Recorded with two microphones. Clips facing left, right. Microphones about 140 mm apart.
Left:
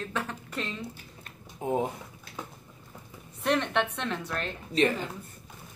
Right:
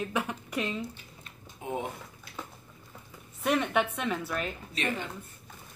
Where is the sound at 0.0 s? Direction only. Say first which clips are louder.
Right 2 dB; 10° right (ahead or behind).